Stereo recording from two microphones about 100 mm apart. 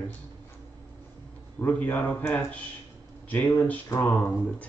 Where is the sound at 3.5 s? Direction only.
25° left (ahead or behind).